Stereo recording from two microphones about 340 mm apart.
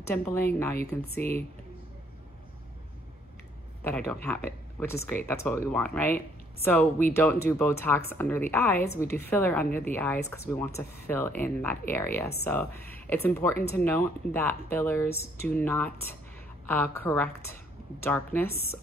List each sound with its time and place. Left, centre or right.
0.0 s speech: centre
0.8 s speech: left
3.8 s speech: centre
4.5 s a sound: centre
5.0 s speech: centre